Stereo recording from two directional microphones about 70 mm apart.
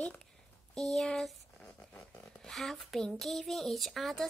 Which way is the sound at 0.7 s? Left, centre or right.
Centre.